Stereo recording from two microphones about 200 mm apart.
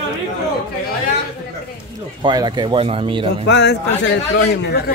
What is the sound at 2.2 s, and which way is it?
Speech, 20° right (ahead or behind).